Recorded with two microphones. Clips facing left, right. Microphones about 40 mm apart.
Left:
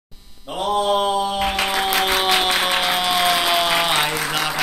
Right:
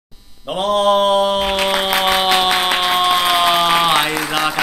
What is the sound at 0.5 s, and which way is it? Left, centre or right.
Mantra, right.